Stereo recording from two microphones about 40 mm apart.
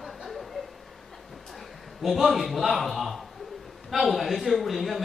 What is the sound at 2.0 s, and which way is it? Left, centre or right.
A man's voice, centre.